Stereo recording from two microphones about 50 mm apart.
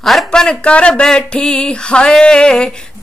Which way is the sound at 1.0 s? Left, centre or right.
Centre.